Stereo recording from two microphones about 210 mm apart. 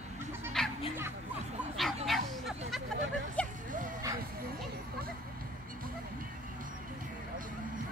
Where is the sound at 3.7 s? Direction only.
40° right (ahead or behind).